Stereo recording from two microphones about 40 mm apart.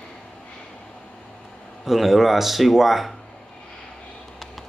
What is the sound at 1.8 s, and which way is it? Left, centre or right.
Speech, centre.